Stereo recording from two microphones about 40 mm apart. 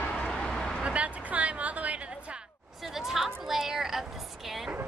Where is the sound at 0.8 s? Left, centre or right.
Right.